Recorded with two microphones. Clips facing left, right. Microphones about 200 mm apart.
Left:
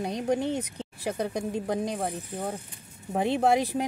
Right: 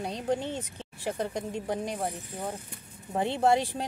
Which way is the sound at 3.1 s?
15° left (ahead or behind).